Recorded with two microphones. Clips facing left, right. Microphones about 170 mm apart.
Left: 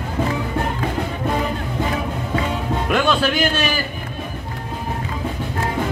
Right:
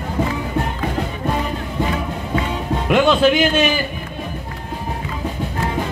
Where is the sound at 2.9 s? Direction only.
20° right (ahead or behind).